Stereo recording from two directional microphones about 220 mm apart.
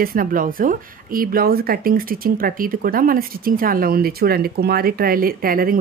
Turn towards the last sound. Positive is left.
turn(degrees=-40)  # may be behind; listen again after turning